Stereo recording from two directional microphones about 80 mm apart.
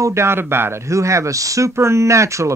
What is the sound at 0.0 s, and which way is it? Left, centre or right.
Speech, right.